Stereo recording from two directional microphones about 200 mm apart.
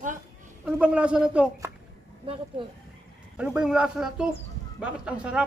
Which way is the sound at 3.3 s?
5° right (ahead or behind).